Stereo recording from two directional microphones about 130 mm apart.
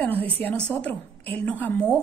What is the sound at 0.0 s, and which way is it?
A woman's voice, 15° left (ahead or behind).